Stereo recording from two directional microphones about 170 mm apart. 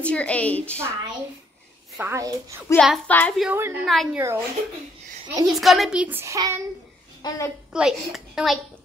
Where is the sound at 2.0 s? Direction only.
15° right (ahead or behind).